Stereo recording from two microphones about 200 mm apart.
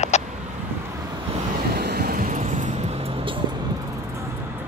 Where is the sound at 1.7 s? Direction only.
50° right (ahead or behind); by 3.4 s 30° right (ahead or behind).